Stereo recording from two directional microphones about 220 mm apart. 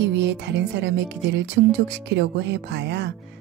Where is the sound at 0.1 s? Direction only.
55° right (ahead or behind).